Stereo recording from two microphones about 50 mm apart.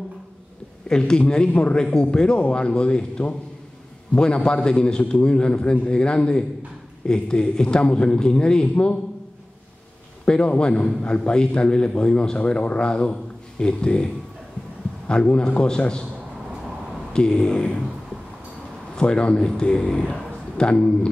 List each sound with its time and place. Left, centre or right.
0.8 s a man's voice: centre
10.2 s a man's voice: centre
17.1 s a man's voice: centre
18.9 s speech: centre